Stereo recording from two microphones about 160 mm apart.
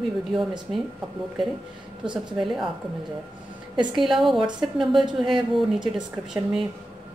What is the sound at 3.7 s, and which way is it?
Speech, 30° right (ahead or behind).